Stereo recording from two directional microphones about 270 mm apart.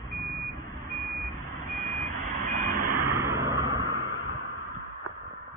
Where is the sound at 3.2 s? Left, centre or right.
Centre.